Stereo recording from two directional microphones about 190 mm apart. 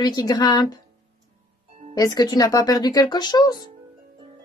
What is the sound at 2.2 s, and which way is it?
Speech, 20° left (ahead or behind).